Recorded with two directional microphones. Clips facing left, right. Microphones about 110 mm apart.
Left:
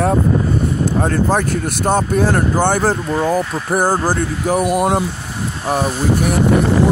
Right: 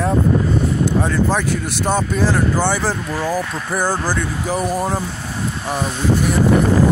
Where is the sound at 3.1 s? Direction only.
25° left (ahead or behind).